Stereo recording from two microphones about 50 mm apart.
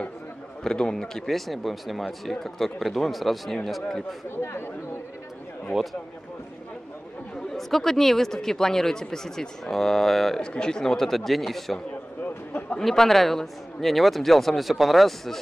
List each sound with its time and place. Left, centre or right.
0.7 s speech: centre
4.4 s speech: left
5.7 s speech: centre
7.5 s speech: centre
10.4 s speech: centre
12.8 s speech: centre